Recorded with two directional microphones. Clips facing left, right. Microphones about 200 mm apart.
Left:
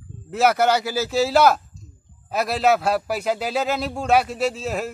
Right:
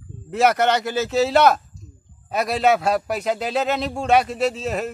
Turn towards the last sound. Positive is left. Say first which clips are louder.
# right 1 dB
turn(degrees=5)  # may be behind; listen again after turning